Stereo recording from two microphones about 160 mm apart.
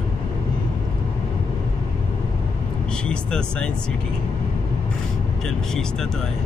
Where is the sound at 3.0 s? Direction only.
5° left (ahead or behind).